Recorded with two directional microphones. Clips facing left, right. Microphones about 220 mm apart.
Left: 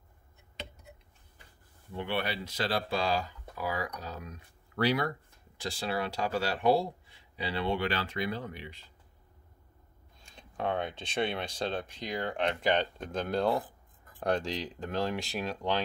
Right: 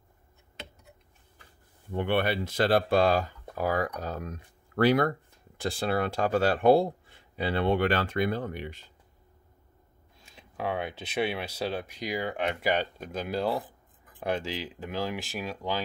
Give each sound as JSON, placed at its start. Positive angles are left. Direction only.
{"t": 1.9, "sound": "speech", "side_deg": -55}
{"t": 10.2, "sound": "speech", "side_deg": -5}